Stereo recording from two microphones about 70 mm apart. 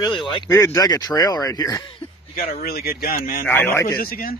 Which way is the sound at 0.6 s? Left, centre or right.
Left.